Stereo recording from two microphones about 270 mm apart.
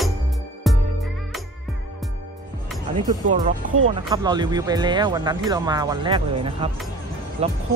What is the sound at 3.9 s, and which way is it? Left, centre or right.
Speech, centre.